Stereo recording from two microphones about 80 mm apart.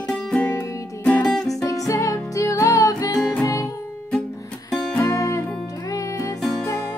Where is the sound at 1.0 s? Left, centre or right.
Centre.